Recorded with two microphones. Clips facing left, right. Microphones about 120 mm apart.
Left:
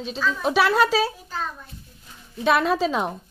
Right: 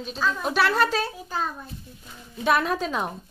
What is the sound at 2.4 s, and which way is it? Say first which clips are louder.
Speech: left 3 dB; centre (ahead or behind).